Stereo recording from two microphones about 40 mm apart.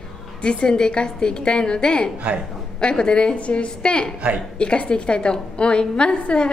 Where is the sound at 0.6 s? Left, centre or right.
Centre.